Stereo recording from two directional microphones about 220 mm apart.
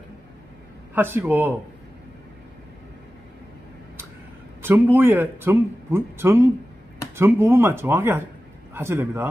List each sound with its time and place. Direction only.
0.9 s a man's voice: 10° right (ahead or behind)
4.6 s a man's voice: 10° right (ahead or behind)